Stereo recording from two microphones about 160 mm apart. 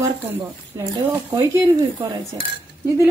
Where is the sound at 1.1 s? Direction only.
15° right (ahead or behind).